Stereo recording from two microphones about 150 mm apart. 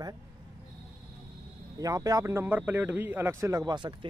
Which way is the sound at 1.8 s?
25° right (ahead or behind).